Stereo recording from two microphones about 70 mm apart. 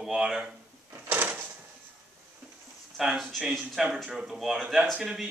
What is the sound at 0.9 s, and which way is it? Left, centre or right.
Drawer open or close, right.